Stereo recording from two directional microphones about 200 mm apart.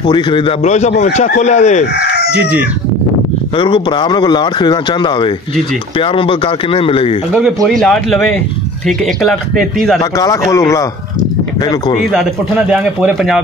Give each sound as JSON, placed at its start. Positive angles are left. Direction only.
{"t": 0.0, "sound": "a man's voice", "side_deg": 25}
{"t": 2.0, "sound": "chicken", "side_deg": 55}
{"t": 2.3, "sound": "chicken", "side_deg": -10}
{"t": 3.5, "sound": "a man's voice", "side_deg": 25}
{"t": 7.6, "sound": "speech", "side_deg": 5}
{"t": 10.1, "sound": "a man's voice", "side_deg": 15}
{"t": 12.0, "sound": "speech", "side_deg": 0}